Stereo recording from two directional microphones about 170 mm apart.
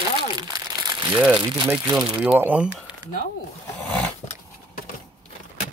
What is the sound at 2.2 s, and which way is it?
Speech, 10° right (ahead or behind).